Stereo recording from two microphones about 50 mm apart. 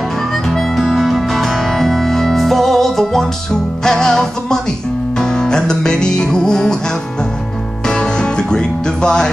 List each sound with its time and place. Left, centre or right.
0.3 s music: centre
7.8 s music: centre